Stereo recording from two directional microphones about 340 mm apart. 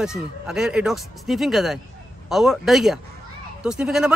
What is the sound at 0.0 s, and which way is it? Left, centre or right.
A man's voice, centre.